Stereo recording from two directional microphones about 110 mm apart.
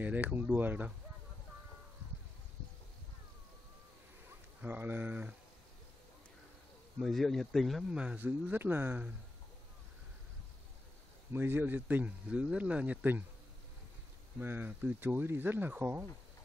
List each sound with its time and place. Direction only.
0.0 s speech: 15° right (ahead or behind)
4.6 s speech: 20° right (ahead or behind)
7.0 s speech: centre (ahead or behind); by 9.1 s 15° right (ahead or behind)
11.3 s speech: 20° right (ahead or behind)
14.4 s speech: 20° right (ahead or behind)